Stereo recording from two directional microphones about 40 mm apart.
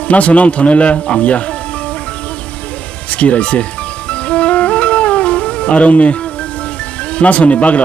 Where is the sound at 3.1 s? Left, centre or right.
Left.